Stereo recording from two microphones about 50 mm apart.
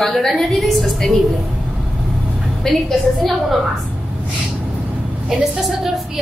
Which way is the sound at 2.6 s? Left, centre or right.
Centre.